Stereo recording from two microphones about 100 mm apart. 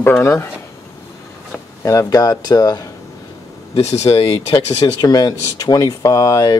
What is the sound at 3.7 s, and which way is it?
Speech, 90° left.